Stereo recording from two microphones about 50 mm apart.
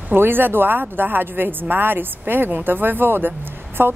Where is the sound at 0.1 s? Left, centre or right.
Right.